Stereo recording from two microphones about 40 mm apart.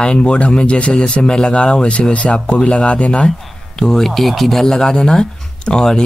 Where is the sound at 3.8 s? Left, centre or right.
Centre.